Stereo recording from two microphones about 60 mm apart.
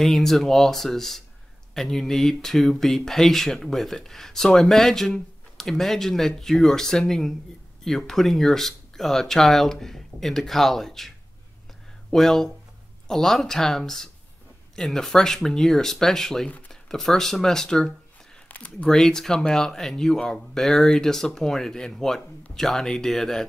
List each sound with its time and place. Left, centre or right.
0.0 s speech: centre
16.4 s a sound: left
16.9 s speech: centre